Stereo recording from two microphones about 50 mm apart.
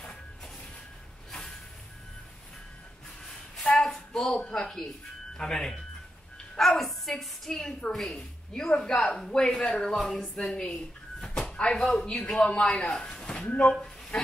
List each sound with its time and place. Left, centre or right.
3.6 s a sound: centre
4.5 s a child's voice: centre
6.8 s a woman's voice: centre
9.9 s a sound: centre
11.7 s speech: centre
12.2 s a man's voice: left